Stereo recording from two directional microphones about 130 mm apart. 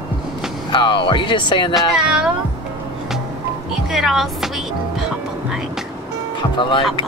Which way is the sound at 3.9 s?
Centre (ahead or behind).